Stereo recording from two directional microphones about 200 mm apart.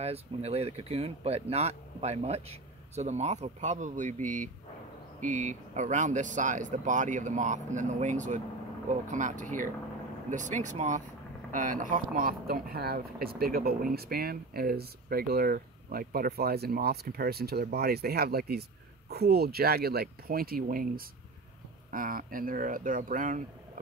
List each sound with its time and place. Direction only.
0.0 s speech: 30° right (ahead or behind)